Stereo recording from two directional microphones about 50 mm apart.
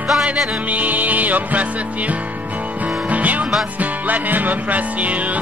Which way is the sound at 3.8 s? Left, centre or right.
Right.